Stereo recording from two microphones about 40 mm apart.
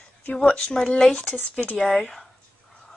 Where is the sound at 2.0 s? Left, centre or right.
Centre.